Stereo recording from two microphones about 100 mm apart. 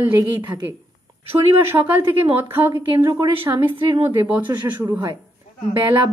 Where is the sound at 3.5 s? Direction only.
30° right (ahead or behind).